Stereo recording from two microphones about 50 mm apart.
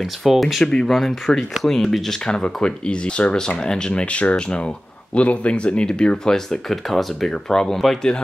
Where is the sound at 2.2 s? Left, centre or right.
Centre.